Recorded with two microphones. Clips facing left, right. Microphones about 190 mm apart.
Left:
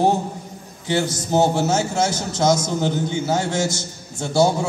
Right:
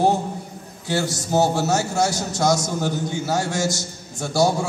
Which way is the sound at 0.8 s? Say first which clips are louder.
Left 2 dB; 20° left (ahead or behind).